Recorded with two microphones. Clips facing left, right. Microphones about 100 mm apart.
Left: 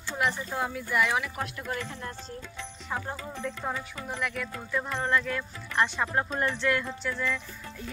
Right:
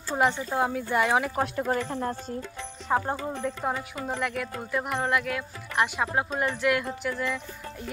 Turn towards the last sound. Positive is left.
turn(degrees=-10)  # may be behind; listen again after turning